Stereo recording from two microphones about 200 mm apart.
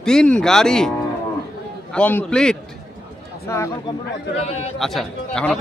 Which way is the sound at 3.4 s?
15° left (ahead or behind).